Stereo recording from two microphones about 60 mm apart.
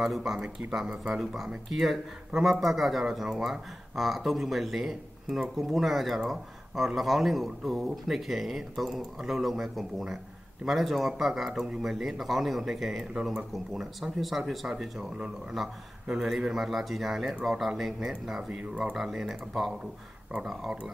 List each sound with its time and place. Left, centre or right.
0.0 s speech: centre
13.1 s speech: centre
18.6 s speech: centre
18.9 s speech: centre